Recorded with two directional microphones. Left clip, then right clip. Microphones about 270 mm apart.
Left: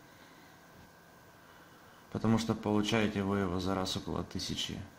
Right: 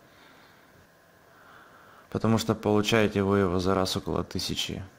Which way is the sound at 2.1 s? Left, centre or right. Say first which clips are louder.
Right 6 dB; right.